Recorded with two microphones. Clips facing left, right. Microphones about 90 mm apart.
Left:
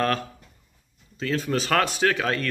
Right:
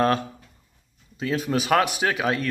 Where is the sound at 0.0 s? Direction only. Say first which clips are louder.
Right 3 dB; 20° right (ahead or behind).